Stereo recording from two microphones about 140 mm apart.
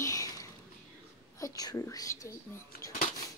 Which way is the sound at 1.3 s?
25° left (ahead or behind).